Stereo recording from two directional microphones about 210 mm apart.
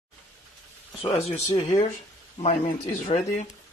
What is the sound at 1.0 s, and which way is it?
Dishes, 25° left (ahead or behind).